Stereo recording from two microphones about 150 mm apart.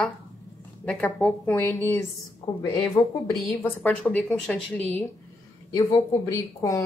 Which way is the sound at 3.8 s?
5° left (ahead or behind).